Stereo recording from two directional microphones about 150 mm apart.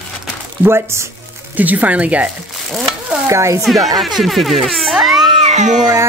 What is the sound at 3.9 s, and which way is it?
Speech, centre (ahead or behind).